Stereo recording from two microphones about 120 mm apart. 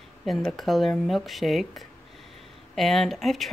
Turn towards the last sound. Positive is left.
turn(degrees=0)  # may be behind; listen again after turning